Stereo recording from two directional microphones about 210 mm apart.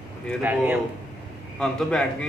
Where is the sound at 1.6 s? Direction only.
5° left (ahead or behind).